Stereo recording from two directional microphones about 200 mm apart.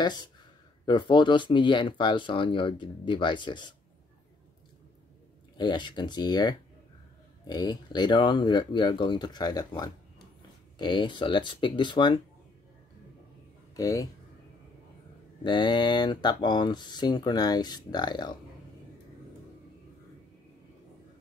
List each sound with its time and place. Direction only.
0.0 s speech: 20° left (ahead or behind)
5.6 s speech: 20° left (ahead or behind)
13.7 s speech: 15° left (ahead or behind)
15.4 s speech: 25° left (ahead or behind)